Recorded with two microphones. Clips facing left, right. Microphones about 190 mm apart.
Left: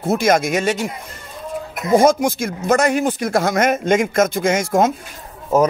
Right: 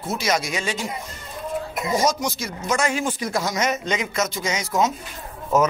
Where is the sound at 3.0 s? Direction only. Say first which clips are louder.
Left 7 dB; 60° left (ahead or behind).